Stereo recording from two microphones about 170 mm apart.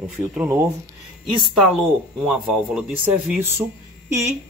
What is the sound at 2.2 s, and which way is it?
Speech, 5° right (ahead or behind).